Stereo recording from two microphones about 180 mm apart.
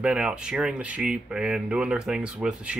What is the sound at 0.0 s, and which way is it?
A man's voice, 5° right (ahead or behind).